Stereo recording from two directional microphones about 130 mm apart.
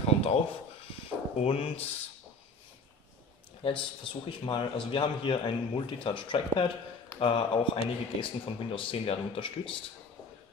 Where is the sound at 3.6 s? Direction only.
40° left (ahead or behind).